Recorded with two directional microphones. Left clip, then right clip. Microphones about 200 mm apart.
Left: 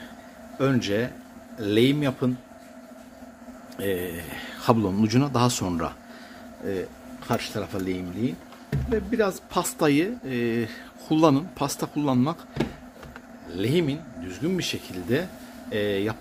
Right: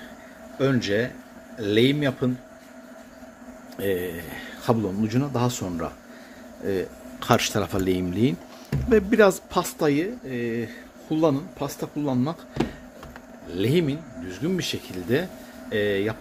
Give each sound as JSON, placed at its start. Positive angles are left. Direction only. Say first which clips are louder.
{"t": 0.6, "sound": "speech", "louder": "right 1 dB", "side_deg": 5}
{"t": 3.7, "sound": "speech", "louder": "right 2 dB", "side_deg": 0}
{"t": 7.2, "sound": "a man's voice", "louder": "right 7 dB", "side_deg": -30}
{"t": 8.2, "sound": "speech", "louder": "right 6 dB", "side_deg": -30}
{"t": 9.5, "sound": "speech", "louder": "even", "side_deg": 0}
{"t": 13.5, "sound": "speech", "louder": "right 2 dB", "side_deg": -10}